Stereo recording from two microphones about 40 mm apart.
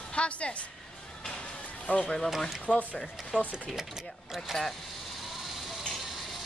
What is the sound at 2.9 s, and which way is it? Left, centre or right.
Speech, centre.